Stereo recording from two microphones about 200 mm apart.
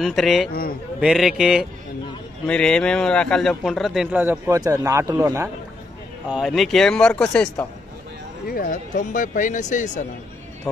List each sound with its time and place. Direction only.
0.0 s a man's voice: centre (ahead or behind)
0.5 s a man's voice: 45° left (ahead or behind)
1.0 s a man's voice: centre (ahead or behind)
6.2 s a man's voice: 5° right (ahead or behind)
8.5 s speech: 45° left (ahead or behind)